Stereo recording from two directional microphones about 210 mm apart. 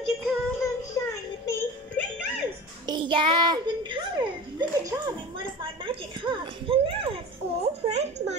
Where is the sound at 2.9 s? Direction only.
20° right (ahead or behind).